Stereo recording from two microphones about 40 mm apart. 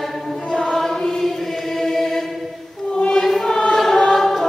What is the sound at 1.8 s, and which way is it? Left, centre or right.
Chant, centre.